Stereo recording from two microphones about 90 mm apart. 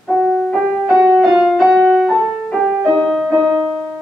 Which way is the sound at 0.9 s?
15° right (ahead or behind).